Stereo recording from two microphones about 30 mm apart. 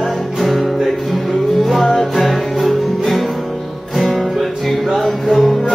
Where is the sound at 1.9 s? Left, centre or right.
Centre.